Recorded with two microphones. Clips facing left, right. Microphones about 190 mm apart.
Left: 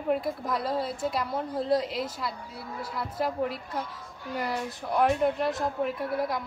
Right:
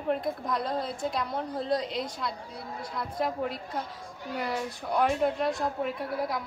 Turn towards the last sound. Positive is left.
turn(degrees=0)  # may be behind; listen again after turning